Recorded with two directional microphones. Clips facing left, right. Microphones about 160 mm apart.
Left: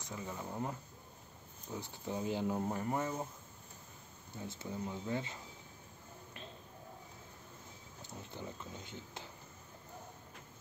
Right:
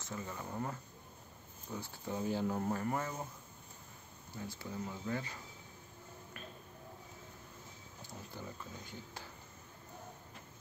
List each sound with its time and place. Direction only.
0.0 s speech: 15° left (ahead or behind)
4.5 s speech: 20° left (ahead or behind)
8.3 s speech: 20° left (ahead or behind)